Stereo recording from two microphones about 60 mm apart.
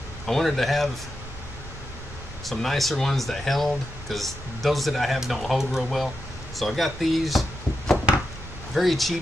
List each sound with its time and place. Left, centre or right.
0.3 s speech: centre
2.4 s speech: centre
8.7 s speech: centre